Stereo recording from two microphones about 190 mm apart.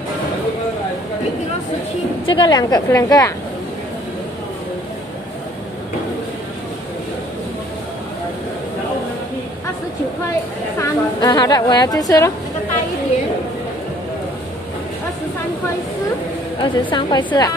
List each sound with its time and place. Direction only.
2.2 s a woman's voice: 25° left (ahead or behind)
10.8 s a woman's voice: 20° left (ahead or behind)
16.6 s a woman's voice: 25° left (ahead or behind)